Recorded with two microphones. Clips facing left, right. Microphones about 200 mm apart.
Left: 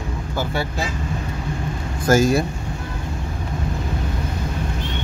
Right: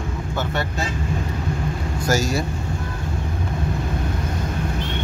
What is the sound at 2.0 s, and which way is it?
Speech, 55° left (ahead or behind).